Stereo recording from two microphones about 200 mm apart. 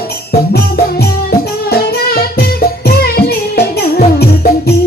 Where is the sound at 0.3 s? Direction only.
50° left (ahead or behind).